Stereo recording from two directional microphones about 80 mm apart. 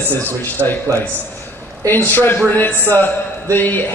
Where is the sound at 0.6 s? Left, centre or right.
Right.